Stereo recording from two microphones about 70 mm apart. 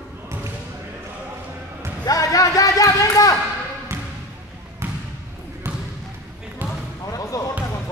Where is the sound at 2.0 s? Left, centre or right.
Left.